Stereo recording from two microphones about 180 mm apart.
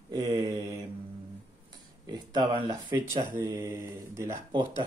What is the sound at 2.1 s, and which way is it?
Speech, 25° right (ahead or behind).